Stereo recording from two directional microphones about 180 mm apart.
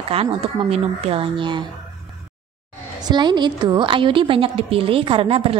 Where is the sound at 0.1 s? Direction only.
30° right (ahead or behind).